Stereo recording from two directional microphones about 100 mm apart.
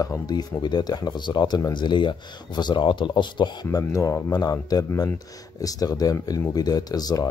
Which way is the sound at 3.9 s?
35° left (ahead or behind).